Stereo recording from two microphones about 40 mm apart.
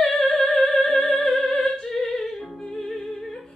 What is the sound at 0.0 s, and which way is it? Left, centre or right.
Music, centre.